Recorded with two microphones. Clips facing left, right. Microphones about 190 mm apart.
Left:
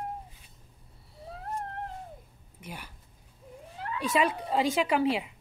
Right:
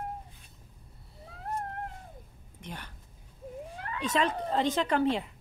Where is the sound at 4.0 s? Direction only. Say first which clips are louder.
Left 1 dB; 10° left (ahead or behind).